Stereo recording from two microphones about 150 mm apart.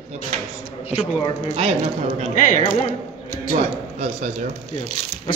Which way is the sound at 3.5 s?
50° right (ahead or behind).